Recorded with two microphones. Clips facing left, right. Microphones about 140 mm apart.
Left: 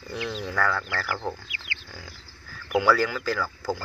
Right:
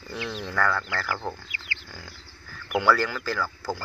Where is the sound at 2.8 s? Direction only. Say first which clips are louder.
Left 1 dB; 10° left (ahead or behind).